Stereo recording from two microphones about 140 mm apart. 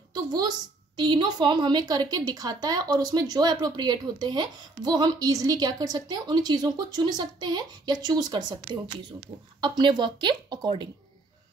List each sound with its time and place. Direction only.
0.1 s a woman's voice: 30° right (ahead or behind)